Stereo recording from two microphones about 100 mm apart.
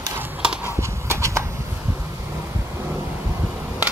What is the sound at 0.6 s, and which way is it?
Clip-clop, 30° right (ahead or behind).